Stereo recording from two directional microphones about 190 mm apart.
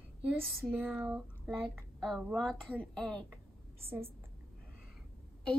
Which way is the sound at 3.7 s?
10° right (ahead or behind).